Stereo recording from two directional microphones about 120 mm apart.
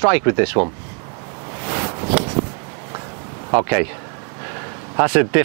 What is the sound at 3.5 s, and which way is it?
Speech, 25° right (ahead or behind).